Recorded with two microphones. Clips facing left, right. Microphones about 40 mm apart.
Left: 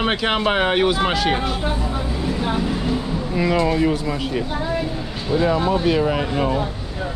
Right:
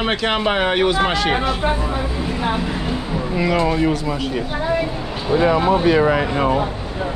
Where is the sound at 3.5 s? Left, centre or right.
Centre.